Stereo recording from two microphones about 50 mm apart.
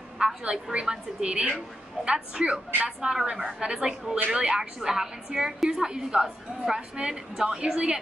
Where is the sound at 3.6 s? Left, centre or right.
Centre.